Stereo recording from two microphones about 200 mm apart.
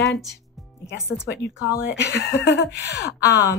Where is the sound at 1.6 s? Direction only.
10° left (ahead or behind).